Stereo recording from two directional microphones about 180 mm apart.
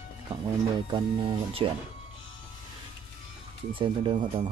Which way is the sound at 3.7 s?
30° right (ahead or behind).